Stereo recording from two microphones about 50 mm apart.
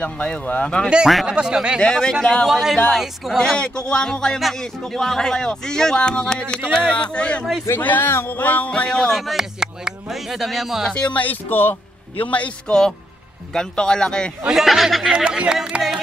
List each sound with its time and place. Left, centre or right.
0.0 s speech: left
0.8 s speech: centre
1.8 s speech: centre
2.4 s speech: centre
3.3 s speech: centre
7.8 s speech: left
8.4 s speech: left; by 9.1 s centre
9.1 s speech: centre
9.4 s speech: centre
11.0 s speech: left
12.2 s speech: left
13.5 s speech: centre
14.5 s speech: centre